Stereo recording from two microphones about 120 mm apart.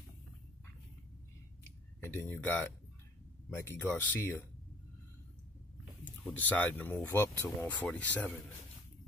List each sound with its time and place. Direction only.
2.0 s speech: 15° left (ahead or behind)
6.2 s speech: 15° left (ahead or behind)